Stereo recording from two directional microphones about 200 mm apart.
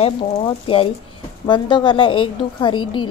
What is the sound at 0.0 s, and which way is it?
A woman's voice, 30° left (ahead or behind).